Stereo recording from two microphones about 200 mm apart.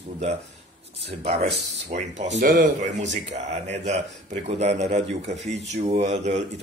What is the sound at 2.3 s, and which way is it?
Speech, 50° right (ahead or behind).